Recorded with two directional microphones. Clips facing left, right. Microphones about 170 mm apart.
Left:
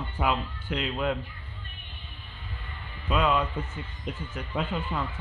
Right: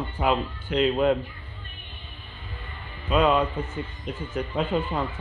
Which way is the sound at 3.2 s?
35° right (ahead or behind).